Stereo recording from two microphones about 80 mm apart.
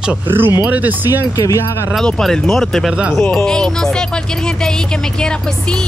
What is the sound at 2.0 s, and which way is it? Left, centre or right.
Speech, centre.